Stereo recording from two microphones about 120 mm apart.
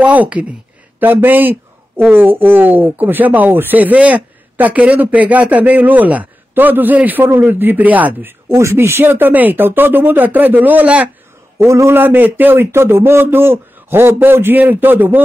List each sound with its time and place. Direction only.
0.0 s speech: 10° right (ahead or behind)
11.5 s speech: 25° right (ahead or behind)